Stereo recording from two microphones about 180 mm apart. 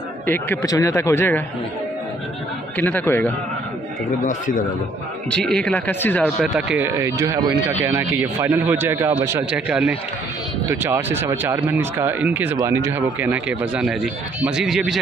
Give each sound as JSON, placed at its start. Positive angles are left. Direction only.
{"t": 0.3, "sound": "speech", "side_deg": 15}
{"t": 2.8, "sound": "speech", "side_deg": 10}
{"t": 4.2, "sound": "a man's voice", "side_deg": 45}
{"t": 5.3, "sound": "speech", "side_deg": 5}
{"t": 7.2, "sound": "speech", "side_deg": -20}